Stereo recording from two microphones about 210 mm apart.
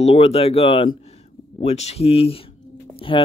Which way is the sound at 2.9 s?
25° left (ahead or behind).